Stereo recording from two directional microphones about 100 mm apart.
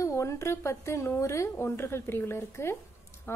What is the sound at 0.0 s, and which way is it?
Speech, 30° left (ahead or behind).